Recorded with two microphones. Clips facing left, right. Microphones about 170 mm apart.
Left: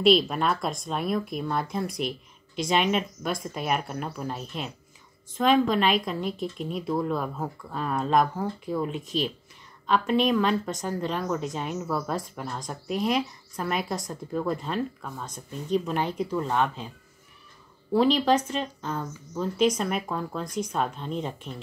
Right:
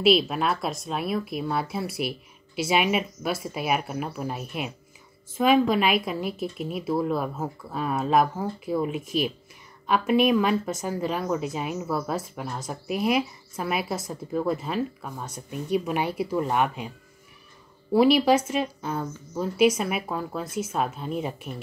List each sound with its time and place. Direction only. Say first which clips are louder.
0.0 s a woman's voice: even; 5° right (ahead or behind)
17.9 s a woman's voice: right 3 dB; 10° right (ahead or behind)